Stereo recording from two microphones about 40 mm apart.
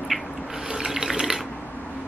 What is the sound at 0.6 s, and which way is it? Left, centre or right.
Water, centre.